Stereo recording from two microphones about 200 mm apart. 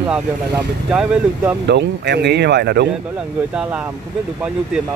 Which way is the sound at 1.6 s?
55° right (ahead or behind).